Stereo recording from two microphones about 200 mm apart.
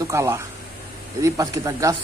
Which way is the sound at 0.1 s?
15° right (ahead or behind).